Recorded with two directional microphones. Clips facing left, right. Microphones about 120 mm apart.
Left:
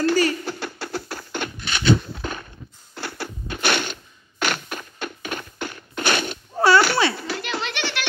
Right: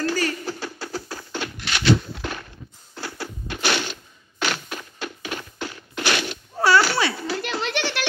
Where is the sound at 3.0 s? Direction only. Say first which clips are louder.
Left 1 dB; 65° left (ahead or behind); by 6.2 s 50° left (ahead or behind).